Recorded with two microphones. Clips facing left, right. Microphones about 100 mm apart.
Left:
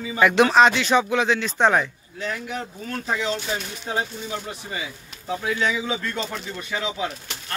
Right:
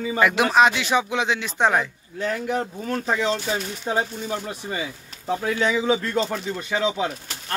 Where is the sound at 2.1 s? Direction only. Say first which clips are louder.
Right 5 dB; 40° right (ahead or behind).